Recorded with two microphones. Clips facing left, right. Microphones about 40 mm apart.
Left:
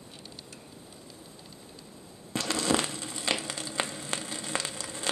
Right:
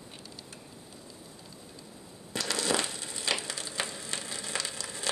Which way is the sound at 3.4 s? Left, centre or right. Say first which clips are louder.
Left 3 dB; left.